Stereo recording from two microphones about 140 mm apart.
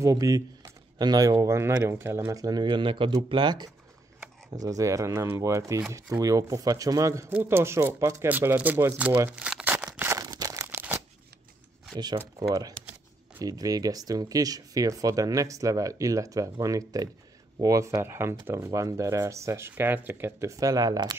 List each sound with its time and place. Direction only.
0.0 s speech: 25° right (ahead or behind)
9.3 s crumpling: 5° right (ahead or behind)
9.9 s a sound: 20° right (ahead or behind)
10.7 s shuffling cards: 15° right (ahead or behind)
11.9 s speech: 30° right (ahead or behind)